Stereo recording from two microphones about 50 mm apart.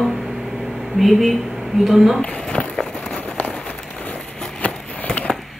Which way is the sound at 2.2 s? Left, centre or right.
Left.